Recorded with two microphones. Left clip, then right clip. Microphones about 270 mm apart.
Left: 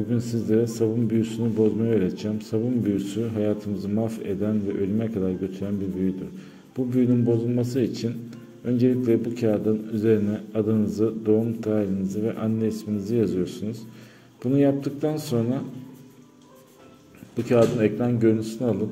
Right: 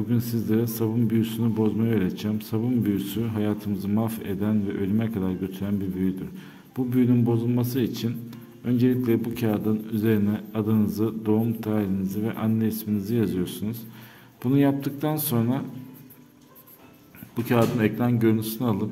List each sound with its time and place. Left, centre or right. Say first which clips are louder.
0.1 s speech: left 3 dB; centre
17.5 s a man's voice: left 3 dB; centre